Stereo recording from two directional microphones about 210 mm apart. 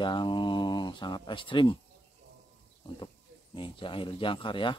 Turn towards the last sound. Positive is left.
turn(degrees=25)  # may be behind; listen again after turning